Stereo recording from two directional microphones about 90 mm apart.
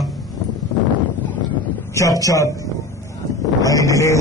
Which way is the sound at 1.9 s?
40° left (ahead or behind).